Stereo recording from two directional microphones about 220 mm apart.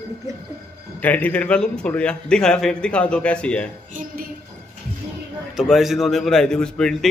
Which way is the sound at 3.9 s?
40° right (ahead or behind).